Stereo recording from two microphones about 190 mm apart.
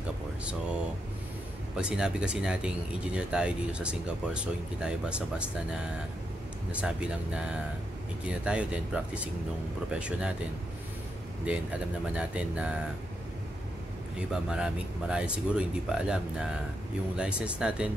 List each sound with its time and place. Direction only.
1.8 s speech: 5° right (ahead or behind)
8.5 s speech: 5° right (ahead or behind)
11.5 s speech: 5° right (ahead or behind)
14.3 s speech: 5° right (ahead or behind)